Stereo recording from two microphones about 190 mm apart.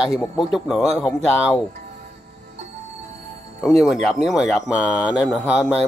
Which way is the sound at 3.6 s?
Centre (ahead or behind).